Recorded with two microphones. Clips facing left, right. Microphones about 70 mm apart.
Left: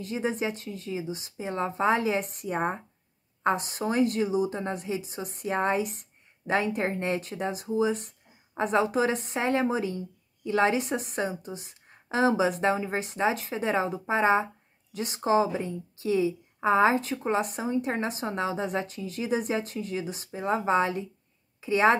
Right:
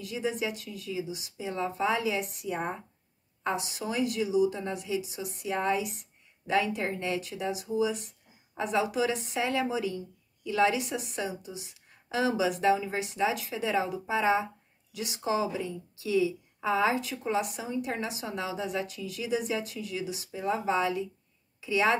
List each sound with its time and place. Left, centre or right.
0.0 s speech: left